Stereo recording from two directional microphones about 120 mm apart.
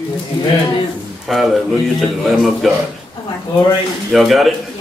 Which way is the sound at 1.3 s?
Centre (ahead or behind).